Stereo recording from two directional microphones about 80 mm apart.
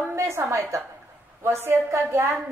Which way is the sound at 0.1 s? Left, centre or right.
Right.